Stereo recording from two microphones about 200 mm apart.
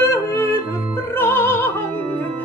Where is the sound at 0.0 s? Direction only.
15° left (ahead or behind).